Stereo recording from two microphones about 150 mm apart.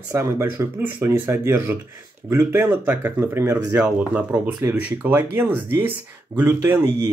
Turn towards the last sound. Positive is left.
turn(degrees=-15)  # may be behind; listen again after turning